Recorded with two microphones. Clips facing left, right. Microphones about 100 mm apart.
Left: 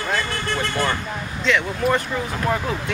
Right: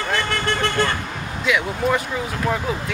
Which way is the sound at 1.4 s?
5° right (ahead or behind).